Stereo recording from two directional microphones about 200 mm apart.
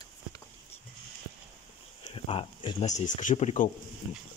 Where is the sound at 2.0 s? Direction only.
25° left (ahead or behind).